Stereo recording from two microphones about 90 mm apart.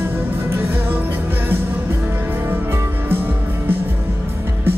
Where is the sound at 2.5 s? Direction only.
25° right (ahead or behind).